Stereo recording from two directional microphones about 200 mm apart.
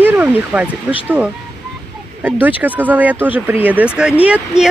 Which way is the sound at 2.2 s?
10° right (ahead or behind).